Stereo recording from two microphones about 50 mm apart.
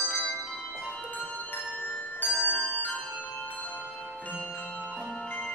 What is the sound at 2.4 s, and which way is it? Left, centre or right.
Bell, left.